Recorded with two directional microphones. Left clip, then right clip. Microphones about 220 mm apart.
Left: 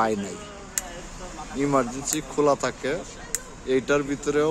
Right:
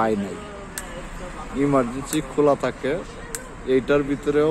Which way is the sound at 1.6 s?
5° left (ahead or behind).